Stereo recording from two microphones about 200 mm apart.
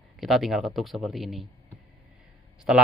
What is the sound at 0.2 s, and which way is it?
Speech, centre (ahead or behind).